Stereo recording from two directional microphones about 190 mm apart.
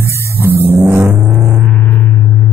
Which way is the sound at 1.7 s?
10° left (ahead or behind).